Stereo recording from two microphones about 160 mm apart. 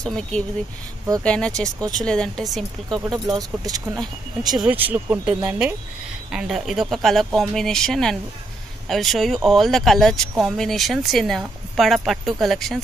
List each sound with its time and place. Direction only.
0.0 s speech: 5° left (ahead or behind)
3.3 s speech: 20° right (ahead or behind); by 12.7 s centre (ahead or behind)